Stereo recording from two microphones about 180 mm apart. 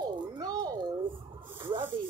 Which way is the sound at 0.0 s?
25° right (ahead or behind).